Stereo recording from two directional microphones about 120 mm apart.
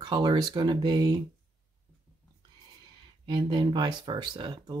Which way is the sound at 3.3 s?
40° right (ahead or behind).